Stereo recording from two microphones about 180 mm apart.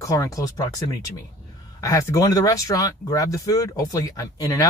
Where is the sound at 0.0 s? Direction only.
20° left (ahead or behind).